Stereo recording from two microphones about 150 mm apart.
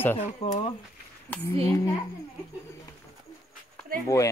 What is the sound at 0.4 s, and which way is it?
Speech, 45° left (ahead or behind).